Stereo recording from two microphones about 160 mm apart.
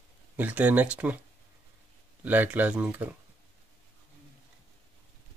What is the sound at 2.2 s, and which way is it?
Speech, 10° right (ahead or behind).